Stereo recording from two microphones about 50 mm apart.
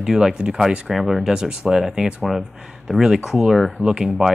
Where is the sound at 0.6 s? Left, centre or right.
Centre.